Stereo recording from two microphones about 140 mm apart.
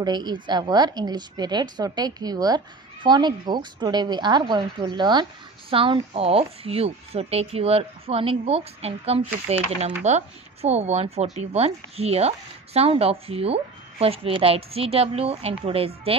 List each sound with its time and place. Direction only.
0.0 s a woman's voice: 30° right (ahead or behind)